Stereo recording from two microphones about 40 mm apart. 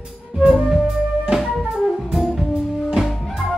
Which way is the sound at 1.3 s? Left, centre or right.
Right.